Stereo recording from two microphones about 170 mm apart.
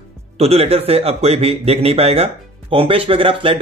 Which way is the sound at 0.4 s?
35° right (ahead or behind).